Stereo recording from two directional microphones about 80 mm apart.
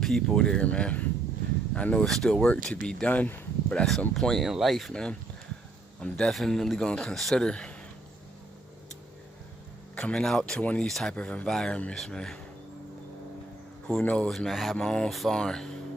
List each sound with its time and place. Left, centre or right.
0.0 s a man's voice: centre
2.0 s a man's voice: centre
3.6 s a man's voice: centre
9.9 s a man's voice: centre
13.8 s a man's voice: centre
14.3 s a man's voice: centre